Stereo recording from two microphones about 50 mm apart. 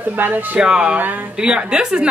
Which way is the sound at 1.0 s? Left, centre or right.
Right.